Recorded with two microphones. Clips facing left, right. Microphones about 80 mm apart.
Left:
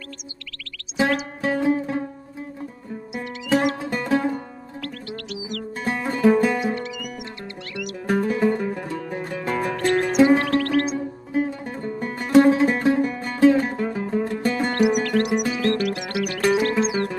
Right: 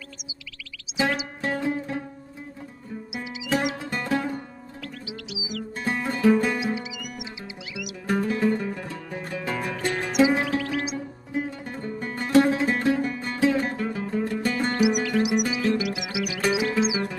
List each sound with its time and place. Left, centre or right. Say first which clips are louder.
0.9 s music: left 4 dB; centre
3.1 s music: left 5 dB; centre
8.5 s music: left 3 dB; centre
9.2 s music: left 4 dB; centre
11.6 s music: left 4 dB; centre
13.4 s music: left 7 dB; centre
13.7 s music: left 3 dB; centre
14.7 s music: left 3 dB; centre